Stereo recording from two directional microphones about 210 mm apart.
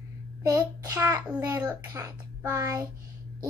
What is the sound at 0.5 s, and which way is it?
A child's voice, 15° right (ahead or behind).